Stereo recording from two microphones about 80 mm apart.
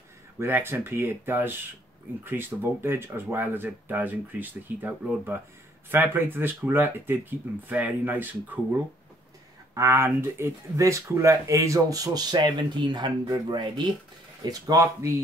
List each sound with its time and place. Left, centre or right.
0.4 s speech: right
9.8 s speech: right
14.4 s speech: right